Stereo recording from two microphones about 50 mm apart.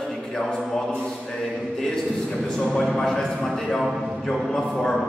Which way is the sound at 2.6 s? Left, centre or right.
Centre.